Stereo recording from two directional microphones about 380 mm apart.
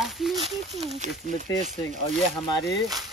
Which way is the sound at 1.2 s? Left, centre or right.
Centre.